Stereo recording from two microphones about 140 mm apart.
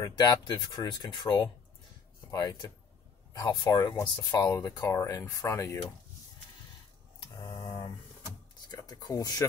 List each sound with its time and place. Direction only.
0.0 s speech: 30° left (ahead or behind)
7.3 s a sound: 25° left (ahead or behind)
8.7 s speech: 25° left (ahead or behind)